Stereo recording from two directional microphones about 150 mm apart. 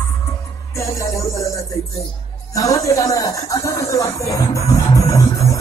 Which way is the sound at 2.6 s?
20° left (ahead or behind).